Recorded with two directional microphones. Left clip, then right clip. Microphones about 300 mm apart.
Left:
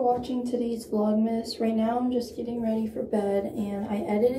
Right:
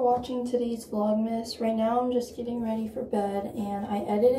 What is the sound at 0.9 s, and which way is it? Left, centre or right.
Speech, right.